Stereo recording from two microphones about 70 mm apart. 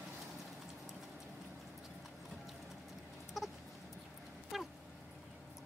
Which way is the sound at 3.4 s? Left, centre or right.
Centre.